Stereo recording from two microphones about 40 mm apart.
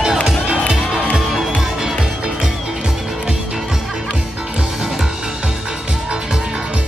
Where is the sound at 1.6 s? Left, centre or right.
Centre.